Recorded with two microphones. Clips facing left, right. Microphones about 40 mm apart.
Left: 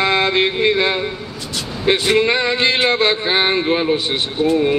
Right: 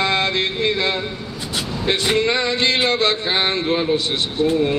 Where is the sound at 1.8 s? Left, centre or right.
Centre.